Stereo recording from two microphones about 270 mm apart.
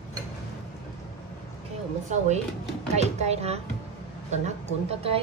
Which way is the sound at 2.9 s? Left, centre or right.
Right.